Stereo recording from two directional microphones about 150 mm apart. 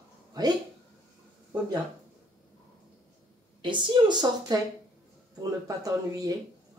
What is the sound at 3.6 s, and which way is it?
Speech, 30° right (ahead or behind).